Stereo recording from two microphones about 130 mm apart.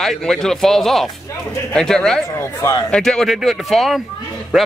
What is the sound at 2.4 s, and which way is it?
Speech, 30° left (ahead or behind).